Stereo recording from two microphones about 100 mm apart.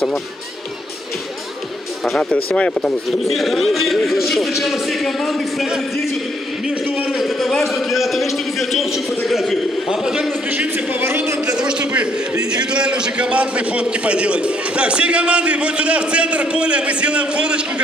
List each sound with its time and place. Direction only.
2.0 s a man's voice: 10° left (ahead or behind)
6.7 s a man's voice: 15° right (ahead or behind)
7.2 s a man's voice: centre (ahead or behind)
10.5 s speech: 20° right (ahead or behind)
11.4 s a man's voice: 10° right (ahead or behind)